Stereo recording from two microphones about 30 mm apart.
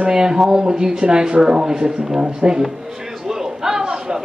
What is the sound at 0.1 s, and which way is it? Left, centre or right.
Speech, right.